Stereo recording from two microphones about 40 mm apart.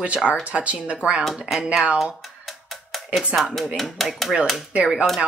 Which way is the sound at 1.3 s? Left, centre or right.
Centre.